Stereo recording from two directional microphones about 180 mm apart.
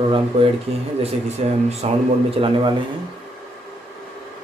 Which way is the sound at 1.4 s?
35° right (ahead or behind).